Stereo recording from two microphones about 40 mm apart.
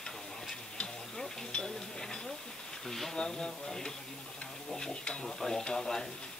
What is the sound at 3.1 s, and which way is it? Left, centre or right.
Speech, centre.